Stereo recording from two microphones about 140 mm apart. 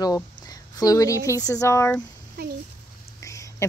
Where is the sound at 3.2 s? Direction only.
25° left (ahead or behind).